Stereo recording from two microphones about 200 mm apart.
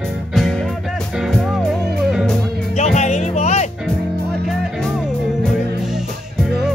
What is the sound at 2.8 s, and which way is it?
Music, 35° left (ahead or behind).